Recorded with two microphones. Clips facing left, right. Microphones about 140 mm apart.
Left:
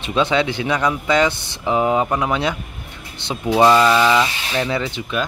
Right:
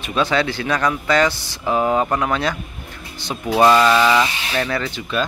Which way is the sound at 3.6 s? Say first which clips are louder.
Even; 10° left (ahead or behind).